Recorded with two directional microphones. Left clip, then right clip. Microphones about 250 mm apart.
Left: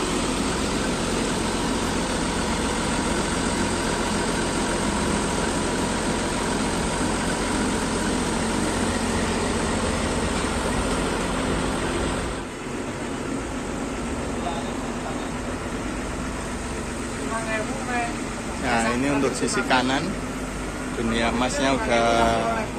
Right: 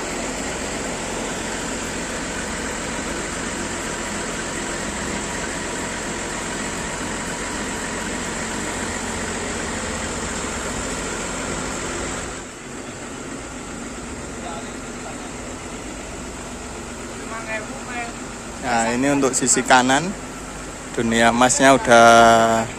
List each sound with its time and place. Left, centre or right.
18.7 s speech: right
21.1 s speech: right